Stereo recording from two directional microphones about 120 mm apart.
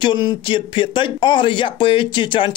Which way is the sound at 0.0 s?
40° left (ahead or behind).